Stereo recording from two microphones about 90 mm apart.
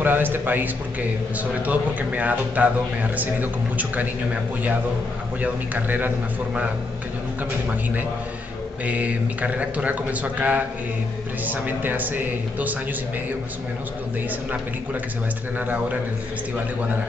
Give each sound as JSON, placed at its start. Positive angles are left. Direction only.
{"t": 0.0, "sound": "a man's voice", "side_deg": -20}
{"t": 8.8, "sound": "a man's voice", "side_deg": -15}
{"t": 15.6, "sound": "speech", "side_deg": -20}